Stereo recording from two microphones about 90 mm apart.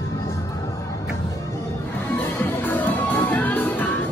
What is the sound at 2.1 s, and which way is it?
Music, 25° left (ahead or behind).